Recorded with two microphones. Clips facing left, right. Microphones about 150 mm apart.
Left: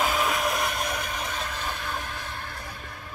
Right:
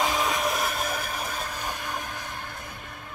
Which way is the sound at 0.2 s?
Centre (ahead or behind).